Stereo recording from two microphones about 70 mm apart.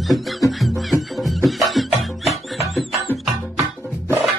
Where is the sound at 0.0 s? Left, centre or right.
Centre.